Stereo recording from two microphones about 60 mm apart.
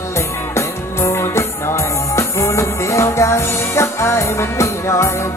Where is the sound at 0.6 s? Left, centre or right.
Left.